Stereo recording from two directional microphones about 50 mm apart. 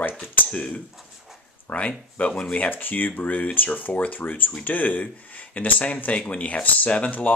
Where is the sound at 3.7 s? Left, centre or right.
Left.